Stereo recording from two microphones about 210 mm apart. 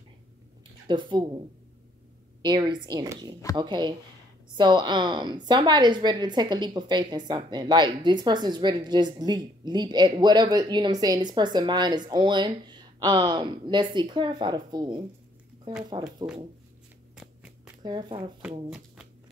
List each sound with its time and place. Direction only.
0.8 s a woman's voice: 20° right (ahead or behind)
2.4 s a woman's voice: 20° right (ahead or behind)
16.3 s speech: 5° right (ahead or behind)
17.1 s shuffling cards: 5° right (ahead or behind)
17.8 s a woman's voice: 20° right (ahead or behind)